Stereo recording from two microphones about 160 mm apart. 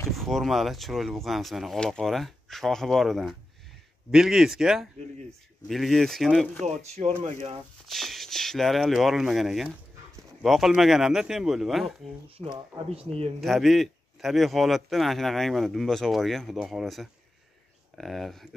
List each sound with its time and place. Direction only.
0.1 s a man's voice: centre (ahead or behind)
6.6 s speech: 45° right (ahead or behind)
7.9 s a man's voice: centre (ahead or behind)
12.4 s speech: 35° right (ahead or behind)
13.4 s a man's voice: centre (ahead or behind)